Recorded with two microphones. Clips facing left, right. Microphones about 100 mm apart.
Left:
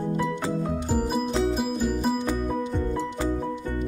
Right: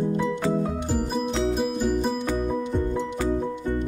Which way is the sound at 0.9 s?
5° left (ahead or behind).